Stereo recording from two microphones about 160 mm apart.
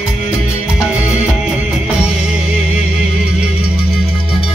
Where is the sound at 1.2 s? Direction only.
5° right (ahead or behind).